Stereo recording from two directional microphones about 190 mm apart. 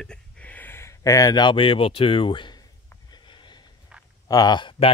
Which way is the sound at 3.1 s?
25° left (ahead or behind).